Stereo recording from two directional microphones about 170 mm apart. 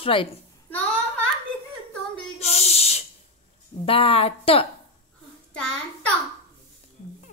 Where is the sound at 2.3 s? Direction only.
40° left (ahead or behind).